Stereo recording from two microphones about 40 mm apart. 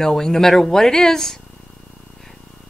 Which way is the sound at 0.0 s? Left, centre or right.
Centre.